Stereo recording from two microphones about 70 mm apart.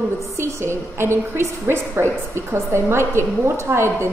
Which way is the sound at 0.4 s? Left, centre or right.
Right.